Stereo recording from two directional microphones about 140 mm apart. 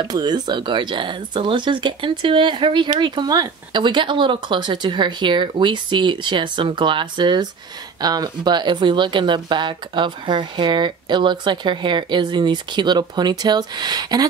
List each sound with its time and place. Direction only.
0.0 s speech: 30° right (ahead or behind)